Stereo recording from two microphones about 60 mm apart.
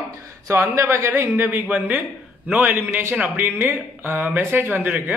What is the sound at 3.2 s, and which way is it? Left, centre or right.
Speech, right.